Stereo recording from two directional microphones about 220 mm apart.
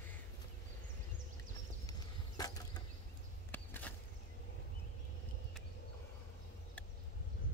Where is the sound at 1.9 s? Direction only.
15° left (ahead or behind).